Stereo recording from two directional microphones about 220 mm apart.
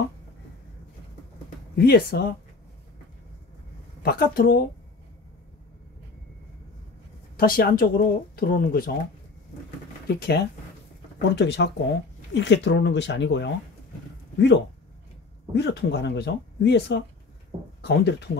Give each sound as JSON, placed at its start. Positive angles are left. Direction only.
{"t": 1.8, "sound": "speech", "side_deg": 45}
{"t": 4.0, "sound": "speech", "side_deg": 45}
{"t": 7.3, "sound": "a woman's voice", "side_deg": 40}
{"t": 10.0, "sound": "speech", "side_deg": 45}
{"t": 15.5, "sound": "speech", "side_deg": 50}
{"t": 17.5, "sound": "speech", "side_deg": -25}
{"t": 17.8, "sound": "speech", "side_deg": 50}